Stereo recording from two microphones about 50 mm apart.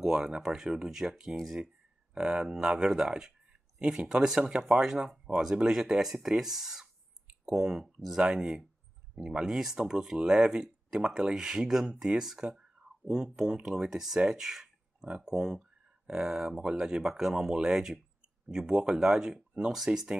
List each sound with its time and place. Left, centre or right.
0.0 s speech: centre
2.1 s speech: centre
12.4 s a sound: centre
13.4 s speech: centre
15.0 s speech: right